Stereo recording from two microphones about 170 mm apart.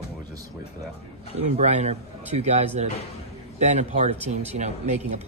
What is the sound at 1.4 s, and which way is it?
Speech, 40° right (ahead or behind).